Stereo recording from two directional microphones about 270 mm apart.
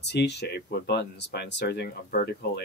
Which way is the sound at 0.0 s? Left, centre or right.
Left.